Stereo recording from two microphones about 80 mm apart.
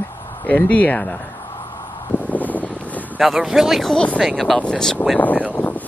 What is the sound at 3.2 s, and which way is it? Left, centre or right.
Speech, centre.